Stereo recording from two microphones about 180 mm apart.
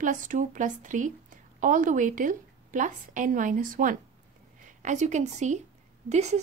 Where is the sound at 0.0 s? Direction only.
45° right (ahead or behind).